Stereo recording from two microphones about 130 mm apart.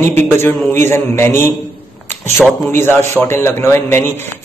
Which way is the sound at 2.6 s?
20° left (ahead or behind).